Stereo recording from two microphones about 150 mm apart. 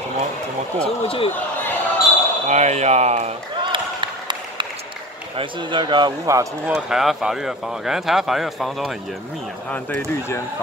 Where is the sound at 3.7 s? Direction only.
30° right (ahead or behind).